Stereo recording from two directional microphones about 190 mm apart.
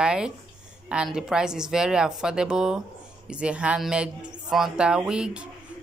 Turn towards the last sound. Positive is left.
turn(degrees=-5)  # may be behind; listen again after turning